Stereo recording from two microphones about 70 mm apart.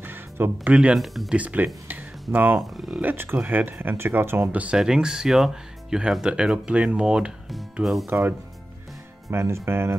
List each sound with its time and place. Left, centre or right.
0.0 s music: right
0.9 s speech: centre
1.3 s speech: right
2.6 s speech: centre
3.0 s speech: right
4.5 s speech: centre
4.7 s speech: centre
8.1 s speech: right